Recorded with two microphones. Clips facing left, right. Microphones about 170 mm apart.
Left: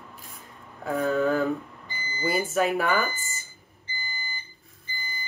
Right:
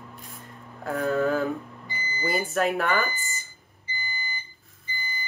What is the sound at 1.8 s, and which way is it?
Smoke detector, 15° right (ahead or behind).